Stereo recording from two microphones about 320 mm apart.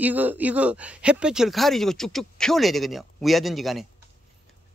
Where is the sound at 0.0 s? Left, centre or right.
Centre.